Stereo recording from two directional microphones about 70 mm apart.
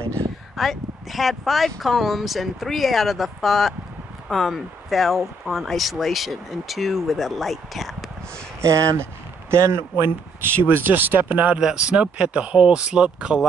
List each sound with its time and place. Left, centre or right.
0.6 s speech: centre
8.5 s a man's voice: right; by 13.5 s centre